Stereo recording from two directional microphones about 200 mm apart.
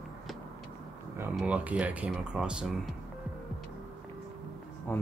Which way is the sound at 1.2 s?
5° right (ahead or behind).